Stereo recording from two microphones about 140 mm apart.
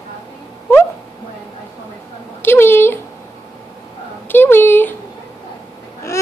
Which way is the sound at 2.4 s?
15° left (ahead or behind).